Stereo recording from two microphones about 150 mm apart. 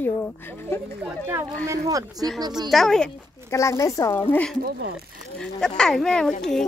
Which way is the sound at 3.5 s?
20° left (ahead or behind).